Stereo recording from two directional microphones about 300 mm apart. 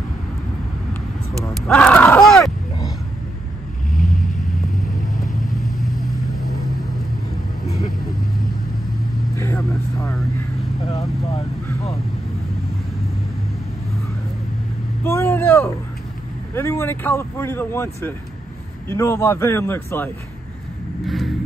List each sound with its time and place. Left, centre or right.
1.4 s a sound: centre
3.9 s vehicle: left
5.4 s vehicle: centre
9.4 s vehicle: centre
15.0 s vehicle: centre
16.5 s speech: centre